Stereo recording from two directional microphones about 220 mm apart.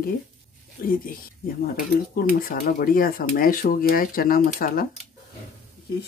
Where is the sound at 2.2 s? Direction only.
40° left (ahead or behind).